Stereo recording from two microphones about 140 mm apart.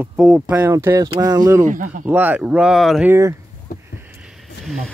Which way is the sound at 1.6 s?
65° right (ahead or behind).